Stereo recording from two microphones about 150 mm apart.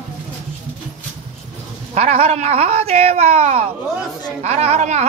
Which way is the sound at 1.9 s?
45° right (ahead or behind).